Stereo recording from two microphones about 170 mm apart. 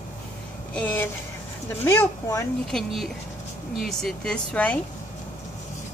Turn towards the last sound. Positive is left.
turn(degrees=10)  # may be behind; listen again after turning